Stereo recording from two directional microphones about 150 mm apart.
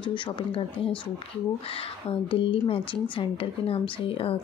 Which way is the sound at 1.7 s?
40° left (ahead or behind).